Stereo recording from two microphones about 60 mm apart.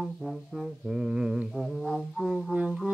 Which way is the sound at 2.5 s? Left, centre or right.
Right.